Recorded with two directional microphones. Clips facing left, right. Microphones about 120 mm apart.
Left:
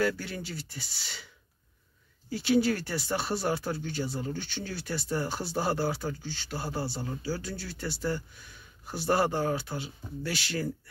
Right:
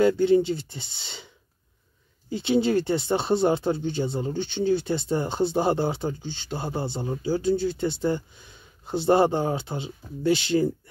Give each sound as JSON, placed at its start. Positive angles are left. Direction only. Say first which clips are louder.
{"t": 0.0, "sound": "speech", "louder": "right 12 dB", "side_deg": -20}